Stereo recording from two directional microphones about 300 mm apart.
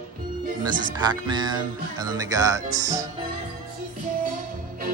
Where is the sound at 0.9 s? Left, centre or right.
Centre.